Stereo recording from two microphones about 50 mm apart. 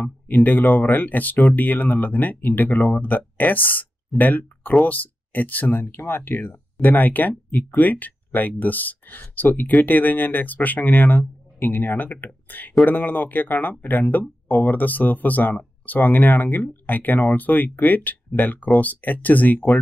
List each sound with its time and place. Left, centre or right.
0.0 s speech: left